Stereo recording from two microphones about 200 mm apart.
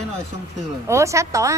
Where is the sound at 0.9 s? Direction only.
15° right (ahead or behind).